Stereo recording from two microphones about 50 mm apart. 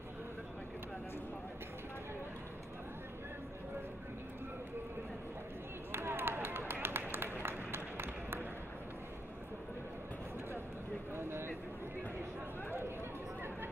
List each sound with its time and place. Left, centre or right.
5.9 s chop: right
6.7 s run: right
11.1 s a sound: right